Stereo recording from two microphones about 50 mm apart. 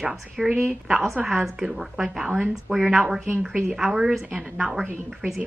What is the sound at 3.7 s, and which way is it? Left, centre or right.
Speech, centre.